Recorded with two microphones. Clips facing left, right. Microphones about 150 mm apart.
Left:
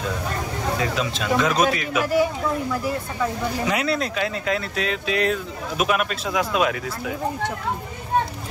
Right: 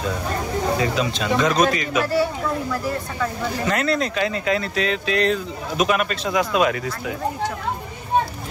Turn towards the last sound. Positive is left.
turn(degrees=0)  # may be behind; listen again after turning